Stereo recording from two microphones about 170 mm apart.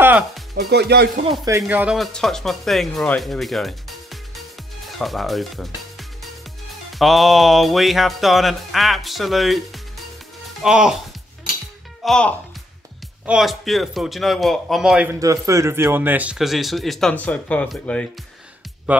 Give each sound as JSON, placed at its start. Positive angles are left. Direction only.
{"t": 0.6, "sound": "speech", "side_deg": -75}
{"t": 1.6, "sound": "speech", "side_deg": -5}
{"t": 2.0, "sound": "music", "side_deg": 0}
{"t": 4.8, "sound": "speech", "side_deg": 0}
{"t": 6.9, "sound": "music", "side_deg": 0}
{"t": 12.0, "sound": "speech", "side_deg": 5}
{"t": 13.2, "sound": "music", "side_deg": -5}
{"t": 15.1, "sound": "music", "side_deg": -20}
{"t": 18.9, "sound": "speech", "side_deg": -10}